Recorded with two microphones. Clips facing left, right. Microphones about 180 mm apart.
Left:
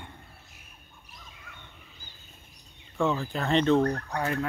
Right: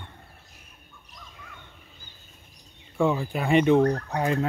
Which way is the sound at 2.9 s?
10° right (ahead or behind).